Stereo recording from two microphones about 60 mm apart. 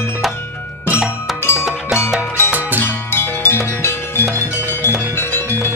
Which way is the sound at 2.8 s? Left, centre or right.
Left.